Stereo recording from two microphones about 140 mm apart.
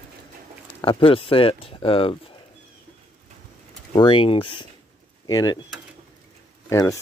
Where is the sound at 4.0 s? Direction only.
40° left (ahead or behind).